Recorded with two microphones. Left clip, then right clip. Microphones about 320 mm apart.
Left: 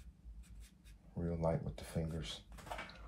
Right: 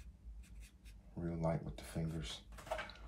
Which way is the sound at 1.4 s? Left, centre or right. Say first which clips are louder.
Left 2 dB; centre.